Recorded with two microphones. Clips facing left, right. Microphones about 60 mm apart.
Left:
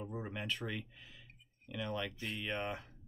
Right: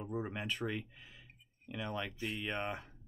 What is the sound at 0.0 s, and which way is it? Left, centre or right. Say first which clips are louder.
Speech: right 3 dB; centre.